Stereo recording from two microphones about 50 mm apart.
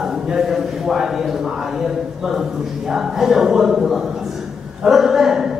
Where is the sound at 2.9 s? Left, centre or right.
Centre.